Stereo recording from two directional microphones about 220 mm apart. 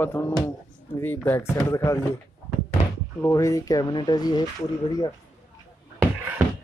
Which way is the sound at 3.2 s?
15° left (ahead or behind).